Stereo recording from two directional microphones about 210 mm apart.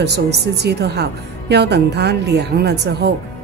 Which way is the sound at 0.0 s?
50° right (ahead or behind).